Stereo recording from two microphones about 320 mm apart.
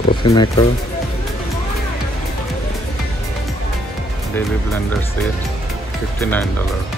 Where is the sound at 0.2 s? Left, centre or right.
Centre.